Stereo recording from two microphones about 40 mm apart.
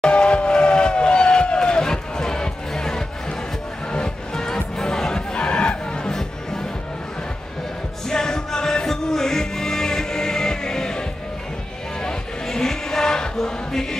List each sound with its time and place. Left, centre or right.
0.0 s a sound: left
3.9 s music: centre
8.1 s music: centre